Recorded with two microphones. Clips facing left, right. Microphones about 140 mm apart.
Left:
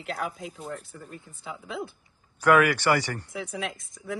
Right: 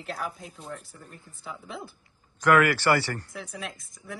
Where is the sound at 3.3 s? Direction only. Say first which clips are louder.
Left 5 dB; centre (ahead or behind).